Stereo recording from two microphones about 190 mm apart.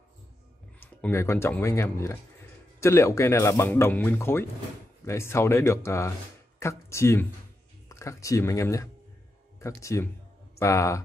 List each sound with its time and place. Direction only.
0.7 s speech: 10° left (ahead or behind)